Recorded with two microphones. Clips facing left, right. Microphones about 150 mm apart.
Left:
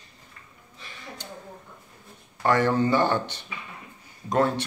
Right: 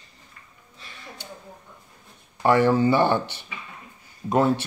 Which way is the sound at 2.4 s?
10° right (ahead or behind).